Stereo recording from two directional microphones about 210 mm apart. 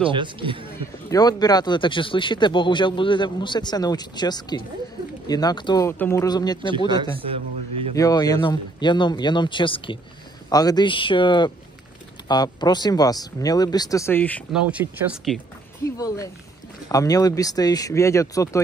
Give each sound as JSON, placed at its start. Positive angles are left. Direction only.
{"t": 0.0, "sound": "speech", "side_deg": -25}
{"t": 1.1, "sound": "speech", "side_deg": 20}
{"t": 7.9, "sound": "speech", "side_deg": 15}
{"t": 14.5, "sound": "speech", "side_deg": -5}
{"t": 15.3, "sound": "speech", "side_deg": 15}